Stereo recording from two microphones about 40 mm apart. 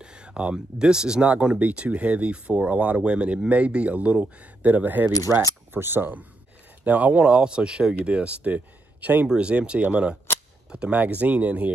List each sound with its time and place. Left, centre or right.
0.0 s speech: right
1.3 s speech: right
5.3 s speech: right
6.8 s speech: right
8.5 s speech: right
9.3 s speech: right